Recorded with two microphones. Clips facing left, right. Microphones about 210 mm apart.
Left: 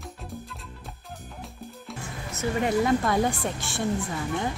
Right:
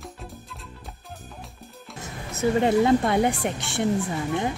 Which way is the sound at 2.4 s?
30° right (ahead or behind).